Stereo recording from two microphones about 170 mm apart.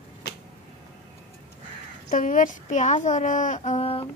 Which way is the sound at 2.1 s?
50° left (ahead or behind).